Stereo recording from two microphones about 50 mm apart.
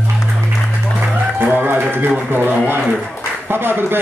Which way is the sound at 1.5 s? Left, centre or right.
Right.